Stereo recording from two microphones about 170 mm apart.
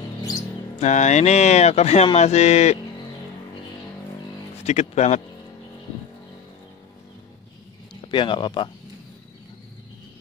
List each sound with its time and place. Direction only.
0.7 s speech: 45° left (ahead or behind)
4.6 s speech: 40° left (ahead or behind)
8.1 s speech: 30° left (ahead or behind)